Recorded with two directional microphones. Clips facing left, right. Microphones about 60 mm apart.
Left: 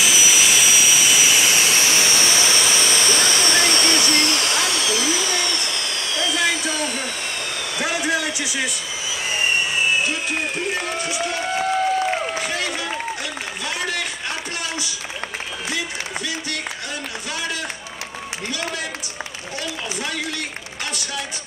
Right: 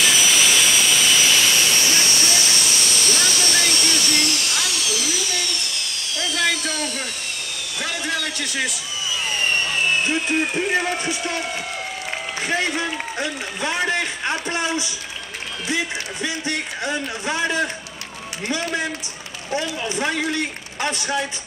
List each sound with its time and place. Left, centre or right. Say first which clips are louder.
0.0 s jet engine: even; centre; by 6.2 s left
7.8 s a sound: left 3 dB; left
8.5 s speech: even; centre
9.1 s vehicle: left 1 dB; centre
12.4 s a sound: right 2 dB; right
19.5 s a man's voice: right 6 dB; right